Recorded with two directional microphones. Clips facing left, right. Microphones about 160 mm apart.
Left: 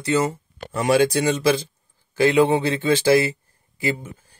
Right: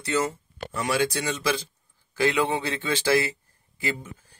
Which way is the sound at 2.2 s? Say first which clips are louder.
Left 7 dB; 30° left (ahead or behind).